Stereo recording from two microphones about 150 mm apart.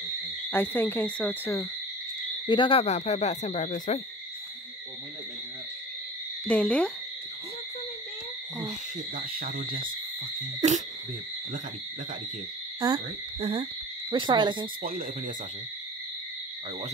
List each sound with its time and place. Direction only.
0.5 s owl: 15° left (ahead or behind)
2.4 s speech: 30° left (ahead or behind); by 4.0 s 55° left (ahead or behind)
6.4 s owl: 10° left (ahead or behind)
9.1 s speech: 70° right (ahead or behind)
12.8 s owl: 25° right (ahead or behind)
13.4 s speech: 40° right (ahead or behind)
14.8 s speech: 65° right (ahead or behind)